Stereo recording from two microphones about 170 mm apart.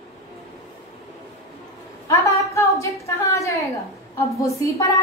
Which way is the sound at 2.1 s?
20° left (ahead or behind).